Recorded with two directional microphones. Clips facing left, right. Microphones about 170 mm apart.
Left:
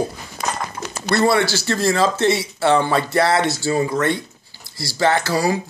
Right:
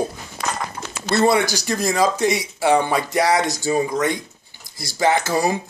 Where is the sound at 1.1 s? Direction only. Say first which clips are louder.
Even; 20° right (ahead or behind).